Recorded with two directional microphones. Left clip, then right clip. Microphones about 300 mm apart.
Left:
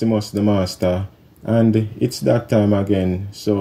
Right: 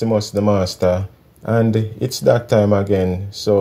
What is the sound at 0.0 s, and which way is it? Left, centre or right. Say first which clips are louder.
Speech: right 2 dB; centre.